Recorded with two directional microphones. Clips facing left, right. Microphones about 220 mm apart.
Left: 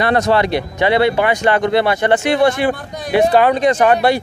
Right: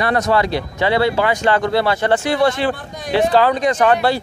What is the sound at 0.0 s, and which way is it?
Speech, 25° left (ahead or behind).